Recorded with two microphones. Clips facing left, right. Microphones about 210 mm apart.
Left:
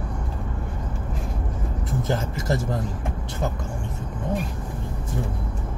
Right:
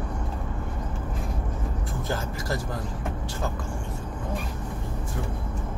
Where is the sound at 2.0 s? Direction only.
20° left (ahead or behind).